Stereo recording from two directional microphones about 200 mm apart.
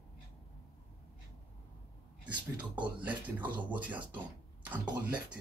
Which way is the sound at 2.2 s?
5° right (ahead or behind).